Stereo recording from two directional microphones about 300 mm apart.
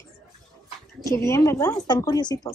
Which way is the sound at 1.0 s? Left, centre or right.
Centre.